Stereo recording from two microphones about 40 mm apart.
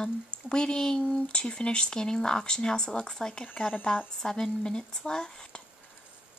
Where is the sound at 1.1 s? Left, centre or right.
Left.